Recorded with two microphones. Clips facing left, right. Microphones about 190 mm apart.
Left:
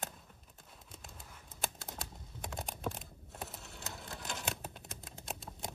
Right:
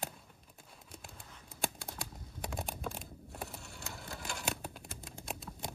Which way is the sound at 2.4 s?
Centre (ahead or behind).